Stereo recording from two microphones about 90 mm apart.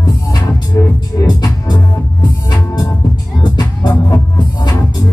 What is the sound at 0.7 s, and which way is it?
Music, 35° left (ahead or behind).